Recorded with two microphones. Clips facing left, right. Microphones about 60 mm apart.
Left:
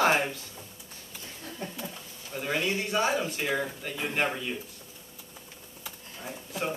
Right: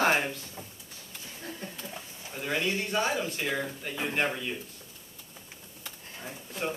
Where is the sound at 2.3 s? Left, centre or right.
Centre.